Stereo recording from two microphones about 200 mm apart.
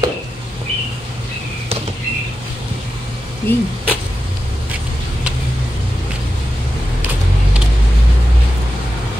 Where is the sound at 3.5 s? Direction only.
10° left (ahead or behind).